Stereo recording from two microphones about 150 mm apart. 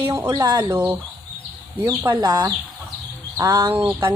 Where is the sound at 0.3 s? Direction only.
25° right (ahead or behind).